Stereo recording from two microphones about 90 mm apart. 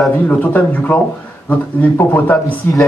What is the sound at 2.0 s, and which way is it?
Speech, 25° left (ahead or behind).